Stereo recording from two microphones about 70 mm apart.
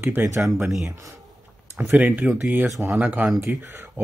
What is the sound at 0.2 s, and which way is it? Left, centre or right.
Speech, right.